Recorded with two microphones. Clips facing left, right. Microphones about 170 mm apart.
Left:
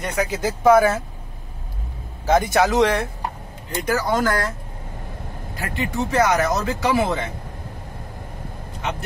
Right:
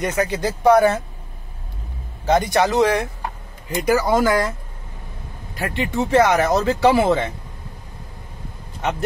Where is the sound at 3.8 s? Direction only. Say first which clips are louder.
Right 4 dB; 10° right (ahead or behind).